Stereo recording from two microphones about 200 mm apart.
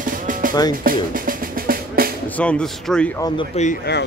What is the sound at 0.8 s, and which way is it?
Drum, 45° right (ahead or behind).